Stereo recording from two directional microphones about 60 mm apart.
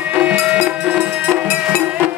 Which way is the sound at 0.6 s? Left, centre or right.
Centre.